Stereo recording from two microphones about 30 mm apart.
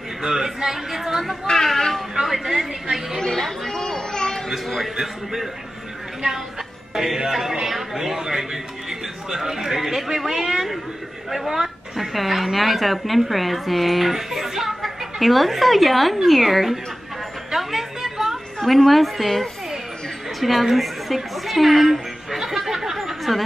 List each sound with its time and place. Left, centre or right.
0.2 s a man's voice: centre
1.5 s speech: centre
2.2 s speech: centre
3.2 s speech: centre
3.4 s chatter: centre
4.6 s speech: centre
6.9 s a man's voice: centre
17.5 s a sound: centre
18.9 s a woman's voice: centre
20.6 s a sound: centre